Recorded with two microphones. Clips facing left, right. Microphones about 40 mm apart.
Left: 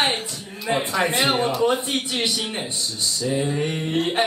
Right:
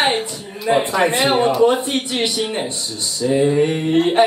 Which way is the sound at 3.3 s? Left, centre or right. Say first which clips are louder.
Right 11 dB; centre.